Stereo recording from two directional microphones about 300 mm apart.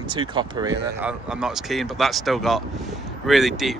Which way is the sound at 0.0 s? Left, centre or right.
Centre.